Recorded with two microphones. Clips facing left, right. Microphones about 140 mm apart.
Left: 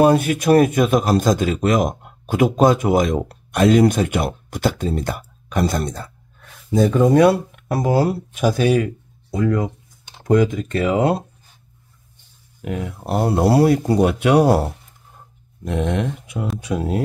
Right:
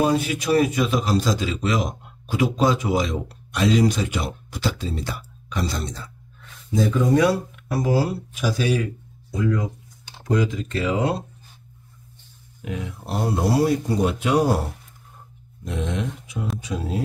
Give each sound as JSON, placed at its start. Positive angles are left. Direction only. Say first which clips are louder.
{"t": 0.0, "sound": "a man's voice", "louder": "left 6 dB", "side_deg": 55}
{"t": 12.6, "sound": "speech", "louder": "left 5 dB", "side_deg": 55}